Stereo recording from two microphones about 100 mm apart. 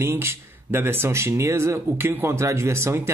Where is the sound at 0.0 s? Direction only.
25° right (ahead or behind).